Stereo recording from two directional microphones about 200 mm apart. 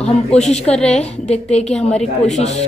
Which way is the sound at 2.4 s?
35° left (ahead or behind).